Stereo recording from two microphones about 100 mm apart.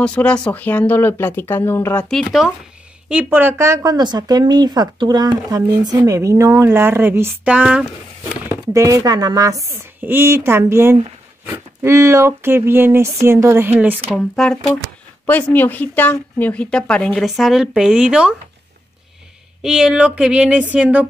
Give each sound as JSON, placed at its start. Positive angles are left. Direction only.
{"t": 0.0, "sound": "speech", "side_deg": 10}
{"t": 2.0, "sound": "speech", "side_deg": 5}
{"t": 3.1, "sound": "speech", "side_deg": -15}
{"t": 3.9, "sound": "speech", "side_deg": -45}
{"t": 6.0, "sound": "speech", "side_deg": -30}
{"t": 7.4, "sound": "speech", "side_deg": -10}
{"t": 8.7, "sound": "speech", "side_deg": -35}
{"t": 9.9, "sound": "speech", "side_deg": -20}
{"t": 14.1, "sound": "speech", "side_deg": 5}
{"t": 15.2, "sound": "a woman's voice", "side_deg": 20}
{"t": 19.6, "sound": "speech", "side_deg": -5}